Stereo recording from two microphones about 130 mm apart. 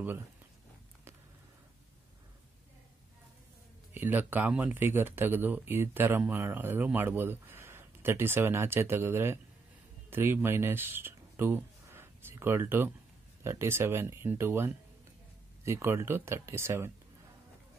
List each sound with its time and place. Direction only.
3.9 s speech: 15° right (ahead or behind)